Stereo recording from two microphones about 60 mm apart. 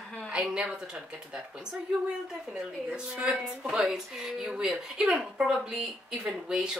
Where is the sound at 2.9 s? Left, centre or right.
Centre.